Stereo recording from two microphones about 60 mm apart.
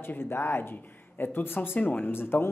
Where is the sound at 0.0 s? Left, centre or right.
Left.